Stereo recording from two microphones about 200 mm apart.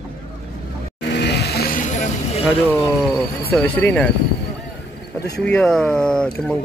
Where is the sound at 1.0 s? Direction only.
55° left (ahead or behind); by 2.4 s 35° left (ahead or behind).